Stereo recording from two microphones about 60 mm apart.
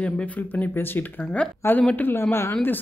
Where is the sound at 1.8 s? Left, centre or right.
Left.